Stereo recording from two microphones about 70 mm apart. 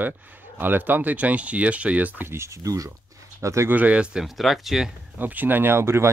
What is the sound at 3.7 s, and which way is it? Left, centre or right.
Speech, right.